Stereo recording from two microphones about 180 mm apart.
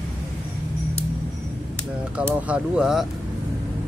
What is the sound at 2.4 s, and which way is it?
Speech, 5° right (ahead or behind).